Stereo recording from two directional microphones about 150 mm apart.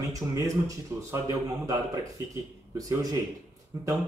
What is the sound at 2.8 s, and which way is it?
Speech, 25° right (ahead or behind).